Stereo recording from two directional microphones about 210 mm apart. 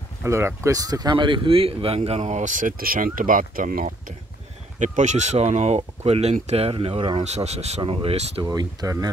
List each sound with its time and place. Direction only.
0.2 s speech: 10° right (ahead or behind)